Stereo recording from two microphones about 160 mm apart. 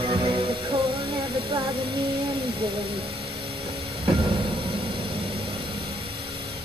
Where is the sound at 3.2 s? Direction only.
35° right (ahead or behind).